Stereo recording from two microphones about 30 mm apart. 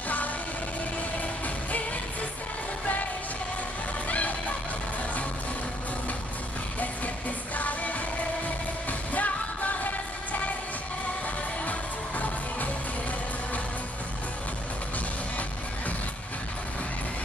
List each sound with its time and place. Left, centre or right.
6.8 s music: left
9.1 s music: left